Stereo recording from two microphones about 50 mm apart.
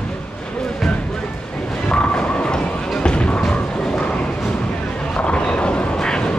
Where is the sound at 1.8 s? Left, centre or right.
Left.